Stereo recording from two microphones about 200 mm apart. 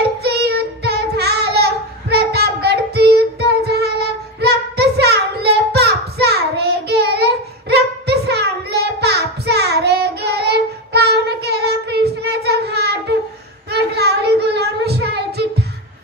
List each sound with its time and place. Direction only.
0.2 s child singing: 55° right (ahead or behind)